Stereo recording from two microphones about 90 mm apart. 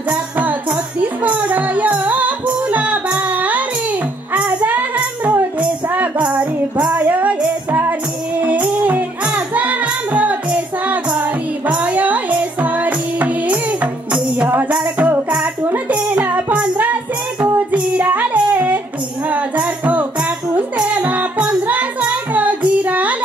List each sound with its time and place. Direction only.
0.1 s music: 15° right (ahead or behind)
17.6 s child singing: 15° right (ahead or behind)
19.2 s music: 15° right (ahead or behind)